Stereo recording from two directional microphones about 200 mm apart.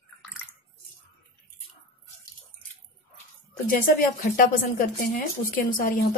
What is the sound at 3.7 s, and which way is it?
A woman's voice, 45° left (ahead or behind).